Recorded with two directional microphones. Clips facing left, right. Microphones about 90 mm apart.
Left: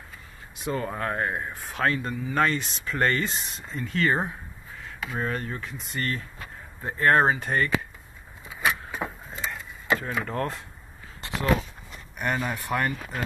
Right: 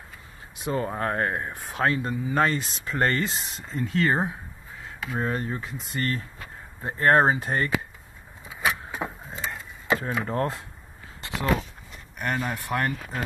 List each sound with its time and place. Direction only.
0.7 s speech: 30° right (ahead or behind); by 1.5 s 50° right (ahead or behind)
1.5 s speech: 25° right (ahead or behind)
8.6 s vehicle: 20° right (ahead or behind)
9.4 s a sound: 30° right (ahead or behind)
10.2 s speech: 30° right (ahead or behind)
12.2 s speech: 5° left (ahead or behind)